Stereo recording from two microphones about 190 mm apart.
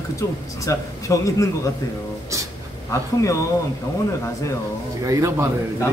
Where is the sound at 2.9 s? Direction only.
15° left (ahead or behind).